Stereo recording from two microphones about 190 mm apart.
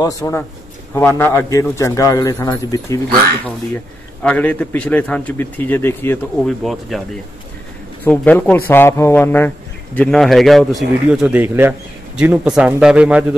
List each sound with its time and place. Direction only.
0.0 s a man's voice: 15° left (ahead or behind)
3.4 s a man's voice: 5° left (ahead or behind)
6.4 s speech: centre (ahead or behind)
8.0 s a man's voice: 5° left (ahead or behind)